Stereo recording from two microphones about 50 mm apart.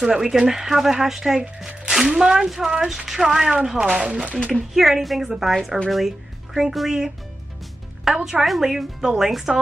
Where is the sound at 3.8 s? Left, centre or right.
Right.